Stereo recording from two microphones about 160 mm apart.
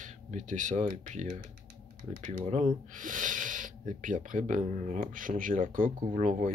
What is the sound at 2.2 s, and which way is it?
Speech, 45° right (ahead or behind).